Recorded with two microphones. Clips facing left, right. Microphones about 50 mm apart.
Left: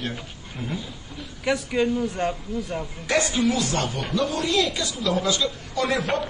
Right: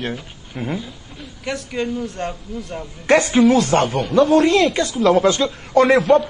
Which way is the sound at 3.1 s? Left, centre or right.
Right.